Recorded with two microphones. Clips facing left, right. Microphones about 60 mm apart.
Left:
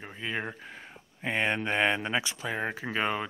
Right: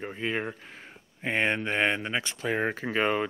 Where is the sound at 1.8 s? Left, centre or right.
Centre.